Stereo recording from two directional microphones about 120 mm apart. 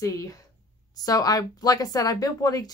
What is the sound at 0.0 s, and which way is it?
A woman's voice, 30° left (ahead or behind).